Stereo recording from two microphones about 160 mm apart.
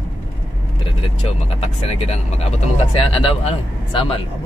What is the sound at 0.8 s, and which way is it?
Speech, 35° left (ahead or behind).